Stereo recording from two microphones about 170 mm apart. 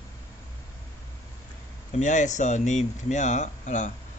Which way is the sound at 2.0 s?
45° left (ahead or behind).